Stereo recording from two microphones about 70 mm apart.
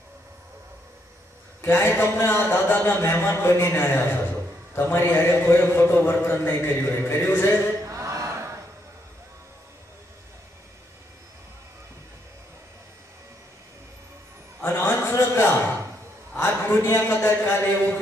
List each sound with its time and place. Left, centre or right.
1.6 s a man's voice: left
7.8 s chant: right
14.6 s a sound: left